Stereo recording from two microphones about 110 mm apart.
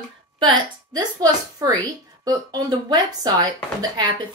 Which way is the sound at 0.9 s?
35° right (ahead or behind).